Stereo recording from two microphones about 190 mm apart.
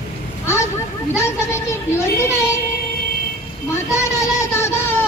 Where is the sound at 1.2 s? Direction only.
15° left (ahead or behind).